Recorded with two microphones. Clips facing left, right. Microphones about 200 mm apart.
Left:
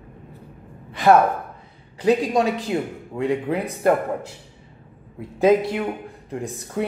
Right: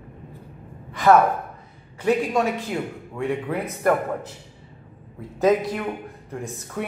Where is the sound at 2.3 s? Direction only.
35° left (ahead or behind).